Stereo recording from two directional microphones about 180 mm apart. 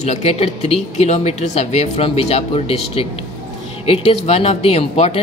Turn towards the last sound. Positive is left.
turn(degrees=35)  # may be behind; listen again after turning